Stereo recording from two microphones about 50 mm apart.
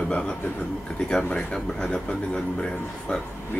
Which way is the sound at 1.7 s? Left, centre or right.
Left.